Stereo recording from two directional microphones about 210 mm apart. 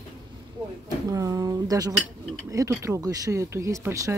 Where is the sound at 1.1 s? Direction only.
15° right (ahead or behind).